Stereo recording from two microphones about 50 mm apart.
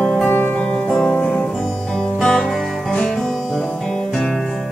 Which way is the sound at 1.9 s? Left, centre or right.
Centre.